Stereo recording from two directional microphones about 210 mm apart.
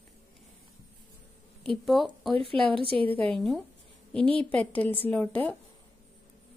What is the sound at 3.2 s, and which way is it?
Speech, centre (ahead or behind).